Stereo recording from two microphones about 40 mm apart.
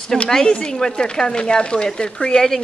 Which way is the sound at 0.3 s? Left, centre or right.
Centre.